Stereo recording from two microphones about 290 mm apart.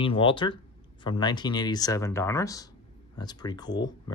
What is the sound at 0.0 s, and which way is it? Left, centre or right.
Speech, centre.